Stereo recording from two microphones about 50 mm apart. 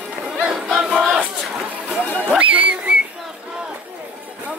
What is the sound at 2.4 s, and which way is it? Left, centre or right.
Whistle, right.